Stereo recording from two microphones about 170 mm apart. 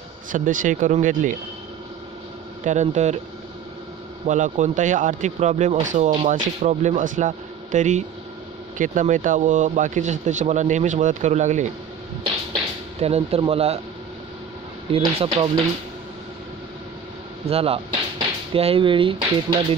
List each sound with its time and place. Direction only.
0.3 s speech: 50° right (ahead or behind)
2.6 s speech: 45° right (ahead or behind)
4.3 s speech: 45° right (ahead or behind)
13.0 s speech: 35° right (ahead or behind)
14.9 s speech: 35° right (ahead or behind)
17.5 s speech: 35° right (ahead or behind)